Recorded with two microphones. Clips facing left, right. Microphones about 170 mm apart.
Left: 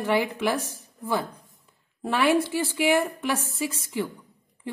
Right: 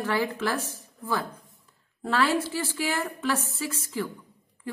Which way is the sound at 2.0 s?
15° left (ahead or behind).